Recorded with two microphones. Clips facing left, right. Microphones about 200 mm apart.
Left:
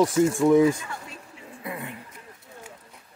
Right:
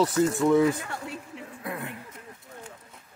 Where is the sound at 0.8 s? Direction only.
65° right (ahead or behind).